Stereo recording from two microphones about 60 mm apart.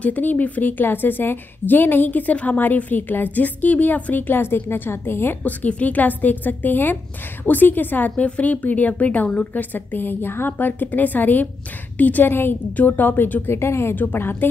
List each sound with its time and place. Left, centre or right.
0.0 s a woman's voice: left
5.4 s a woman's voice: left
13.9 s a woman's voice: left